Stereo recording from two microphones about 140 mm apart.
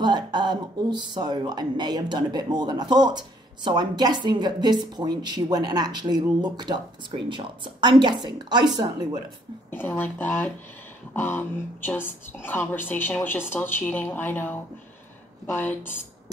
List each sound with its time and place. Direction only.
0.0 s speech: 30° right (ahead or behind)
9.7 s a woman's voice: 15° left (ahead or behind)